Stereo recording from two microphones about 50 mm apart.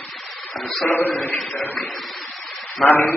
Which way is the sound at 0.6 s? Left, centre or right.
Centre.